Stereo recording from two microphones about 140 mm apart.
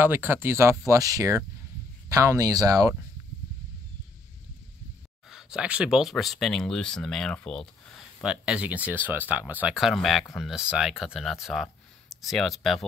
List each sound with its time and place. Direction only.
0.0 s speech: 15° right (ahead or behind)
5.3 s speech: 5° right (ahead or behind)